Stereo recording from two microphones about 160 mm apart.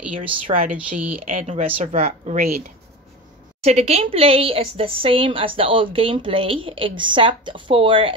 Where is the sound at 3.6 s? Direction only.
40° right (ahead or behind).